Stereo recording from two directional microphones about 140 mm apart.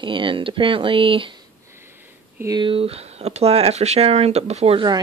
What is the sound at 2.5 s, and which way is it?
Speech, 40° right (ahead or behind).